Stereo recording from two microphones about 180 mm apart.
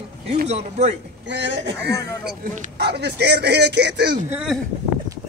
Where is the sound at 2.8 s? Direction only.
65° right (ahead or behind).